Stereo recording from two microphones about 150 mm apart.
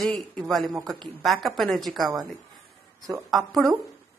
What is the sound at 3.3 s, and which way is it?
Speech, centre (ahead or behind).